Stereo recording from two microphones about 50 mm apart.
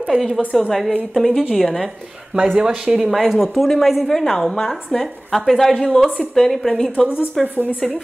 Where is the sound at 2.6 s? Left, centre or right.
Centre.